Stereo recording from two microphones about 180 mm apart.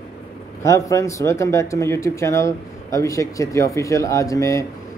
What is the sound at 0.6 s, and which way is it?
Speech, 15° left (ahead or behind).